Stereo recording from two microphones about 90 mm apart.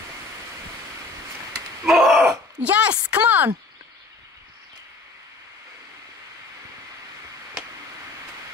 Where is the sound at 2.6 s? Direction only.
15° right (ahead or behind).